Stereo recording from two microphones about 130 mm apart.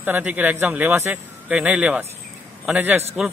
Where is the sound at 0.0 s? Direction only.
15° right (ahead or behind).